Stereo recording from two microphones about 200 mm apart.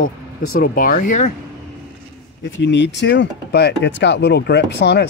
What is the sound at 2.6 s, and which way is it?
Speech, 60° left (ahead or behind).